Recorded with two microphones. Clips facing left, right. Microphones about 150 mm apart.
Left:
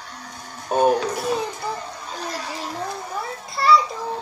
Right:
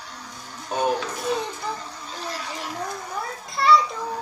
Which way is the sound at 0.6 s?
50° left (ahead or behind).